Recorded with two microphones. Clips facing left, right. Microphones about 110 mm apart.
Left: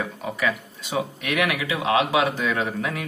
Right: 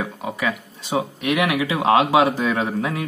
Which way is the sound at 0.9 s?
20° right (ahead or behind).